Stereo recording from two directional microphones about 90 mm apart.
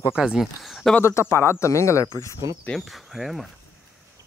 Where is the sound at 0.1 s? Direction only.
5° right (ahead or behind).